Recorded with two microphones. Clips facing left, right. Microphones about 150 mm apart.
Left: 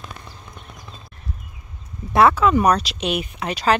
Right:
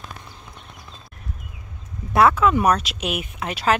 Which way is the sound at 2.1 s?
Centre (ahead or behind).